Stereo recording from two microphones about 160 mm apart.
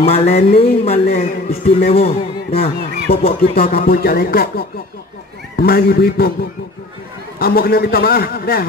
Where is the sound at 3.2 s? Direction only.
65° left (ahead or behind).